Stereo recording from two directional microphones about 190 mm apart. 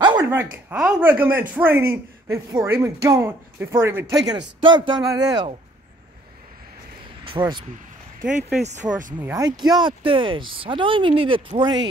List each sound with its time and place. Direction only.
0.0 s a sound: 20° right (ahead or behind)
0.3 s speech: 10° right (ahead or behind)
4.6 s speech: 25° right (ahead or behind)
7.2 s speech: 25° right (ahead or behind)
8.4 s speech: 5° right (ahead or behind)
9.2 s speech: 15° right (ahead or behind)